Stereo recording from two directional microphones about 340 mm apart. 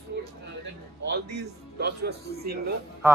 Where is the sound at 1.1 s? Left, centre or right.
Right.